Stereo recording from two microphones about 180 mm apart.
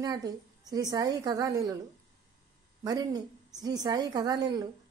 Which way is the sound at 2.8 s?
20° right (ahead or behind).